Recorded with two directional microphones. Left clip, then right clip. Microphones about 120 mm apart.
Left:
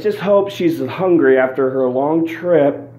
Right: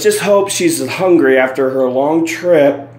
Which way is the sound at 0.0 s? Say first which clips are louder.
Right 6 dB; 40° right (ahead or behind).